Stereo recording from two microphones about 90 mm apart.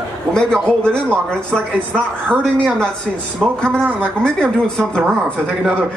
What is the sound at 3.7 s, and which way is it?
Speech, 20° right (ahead or behind).